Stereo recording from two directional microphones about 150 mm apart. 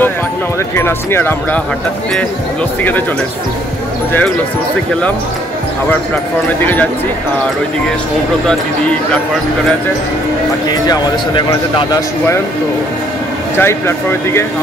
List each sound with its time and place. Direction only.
0.7 s speech: 15° left (ahead or behind)
6.6 s speech: 10° left (ahead or behind)
8.5 s speech: 5° left (ahead or behind)
13.6 s speech: 15° left (ahead or behind)